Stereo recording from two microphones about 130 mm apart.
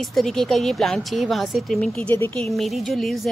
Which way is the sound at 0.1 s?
5° left (ahead or behind).